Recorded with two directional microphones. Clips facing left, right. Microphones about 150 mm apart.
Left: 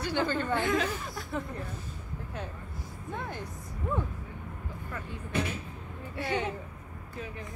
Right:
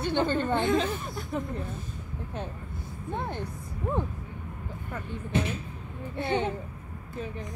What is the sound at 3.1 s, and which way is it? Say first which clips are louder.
Speech: right 4 dB; 25° right (ahead or behind).